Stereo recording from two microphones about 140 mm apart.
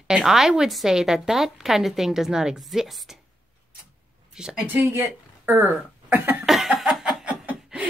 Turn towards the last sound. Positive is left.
turn(degrees=-10)  # may be behind; listen again after turning